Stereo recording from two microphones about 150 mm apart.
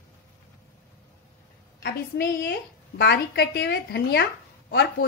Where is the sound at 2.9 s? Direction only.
90° left.